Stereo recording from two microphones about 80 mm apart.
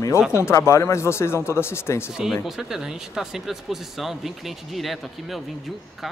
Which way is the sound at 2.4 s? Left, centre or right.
Centre.